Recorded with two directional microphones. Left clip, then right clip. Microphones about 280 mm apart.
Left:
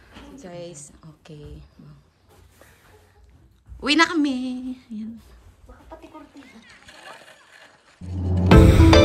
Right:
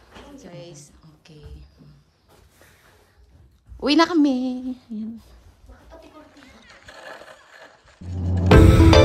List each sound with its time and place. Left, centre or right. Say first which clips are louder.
0.4 s a woman's voice: left 7 dB; centre
3.8 s a woman's voice: right 1 dB; centre
6.6 s music: right 5 dB; right
8.5 s music: even; centre